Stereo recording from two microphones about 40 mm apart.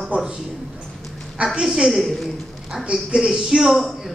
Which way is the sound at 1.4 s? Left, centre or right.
Right.